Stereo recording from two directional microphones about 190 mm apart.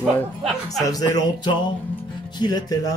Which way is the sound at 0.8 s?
20° left (ahead or behind).